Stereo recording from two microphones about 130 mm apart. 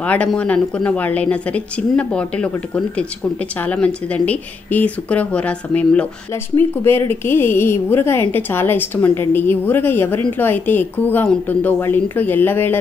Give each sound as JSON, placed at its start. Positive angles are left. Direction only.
{"t": 0.0, "sound": "a woman's voice", "side_deg": 10}